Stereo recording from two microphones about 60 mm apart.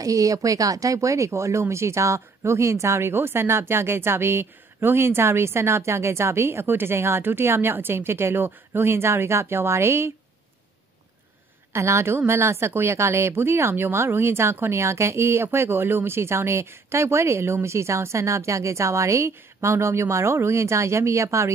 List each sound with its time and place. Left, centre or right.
0.0 s speech: right
11.7 s speech: right